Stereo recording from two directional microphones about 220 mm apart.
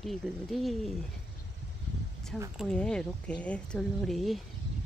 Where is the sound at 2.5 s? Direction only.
5° left (ahead or behind).